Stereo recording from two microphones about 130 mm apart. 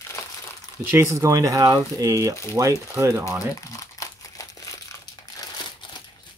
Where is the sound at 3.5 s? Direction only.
25° left (ahead or behind).